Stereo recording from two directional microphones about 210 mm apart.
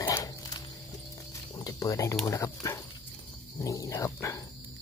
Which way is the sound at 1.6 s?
15° left (ahead or behind).